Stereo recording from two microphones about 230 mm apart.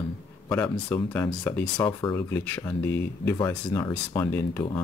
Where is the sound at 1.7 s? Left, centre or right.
Centre.